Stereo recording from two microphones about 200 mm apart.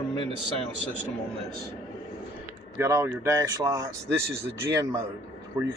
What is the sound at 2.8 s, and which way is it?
A man's voice, 15° right (ahead or behind).